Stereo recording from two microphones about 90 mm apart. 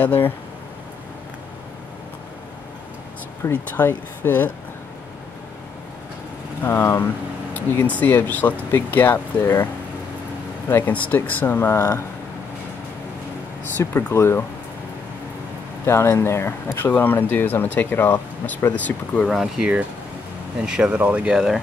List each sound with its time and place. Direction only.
0.0 s speech: 20° left (ahead or behind)
3.4 s speech: 25° left (ahead or behind)
6.6 s speech: 25° left (ahead or behind)
10.7 s speech: 20° left (ahead or behind)
13.8 s speech: 35° left (ahead or behind)
15.8 s speech: 30° left (ahead or behind)
19.2 s speech: centre (ahead or behind)